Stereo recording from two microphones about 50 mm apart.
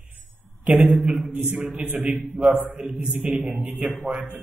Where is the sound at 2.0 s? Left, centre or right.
Centre.